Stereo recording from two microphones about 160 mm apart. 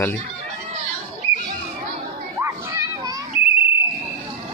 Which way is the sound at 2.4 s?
20° right (ahead or behind).